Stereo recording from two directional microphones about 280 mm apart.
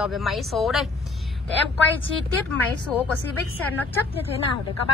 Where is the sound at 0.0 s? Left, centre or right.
Centre.